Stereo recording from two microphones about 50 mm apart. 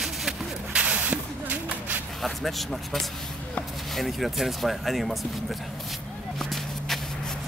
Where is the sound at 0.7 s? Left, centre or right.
Right.